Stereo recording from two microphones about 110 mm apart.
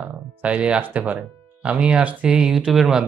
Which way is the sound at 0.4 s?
10° right (ahead or behind).